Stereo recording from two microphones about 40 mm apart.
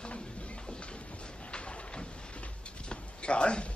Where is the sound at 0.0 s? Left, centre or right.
Left.